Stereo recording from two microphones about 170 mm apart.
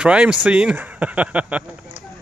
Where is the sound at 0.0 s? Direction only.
5° right (ahead or behind).